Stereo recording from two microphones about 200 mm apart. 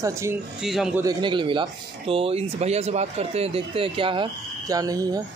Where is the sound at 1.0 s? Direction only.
25° right (ahead or behind).